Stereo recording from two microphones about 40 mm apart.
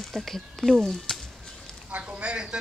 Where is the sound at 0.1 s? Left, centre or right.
Centre.